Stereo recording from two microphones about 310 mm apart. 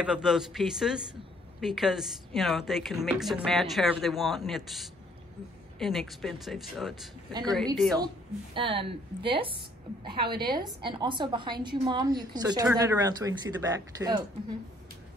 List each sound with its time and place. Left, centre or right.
0.0 s a woman's voice: centre
8.5 s a woman's voice: centre